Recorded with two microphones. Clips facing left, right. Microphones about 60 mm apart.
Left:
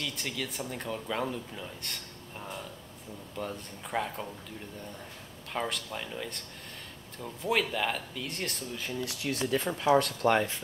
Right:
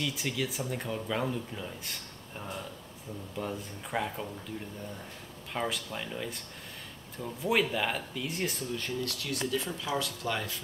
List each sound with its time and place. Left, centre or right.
0.0 s speech: centre
5.5 s speech: centre
9.5 s speech: left